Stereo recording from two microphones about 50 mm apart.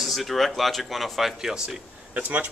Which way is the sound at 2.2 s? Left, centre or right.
Right.